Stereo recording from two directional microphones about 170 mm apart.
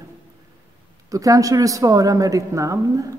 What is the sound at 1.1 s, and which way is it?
A woman's voice, 20° right (ahead or behind).